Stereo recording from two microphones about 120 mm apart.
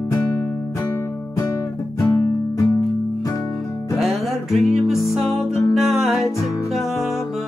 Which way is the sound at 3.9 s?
Centre (ahead or behind).